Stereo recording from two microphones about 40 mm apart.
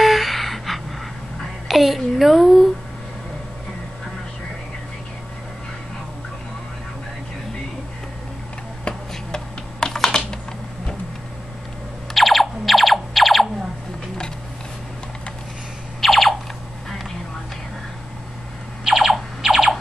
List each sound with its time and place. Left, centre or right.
0.0 s gasp: centre
1.7 s a sound: centre
2.0 s speech: centre
9.3 s typing: centre
12.1 s music: centre
16.0 s a sound: centre
18.9 s music: centre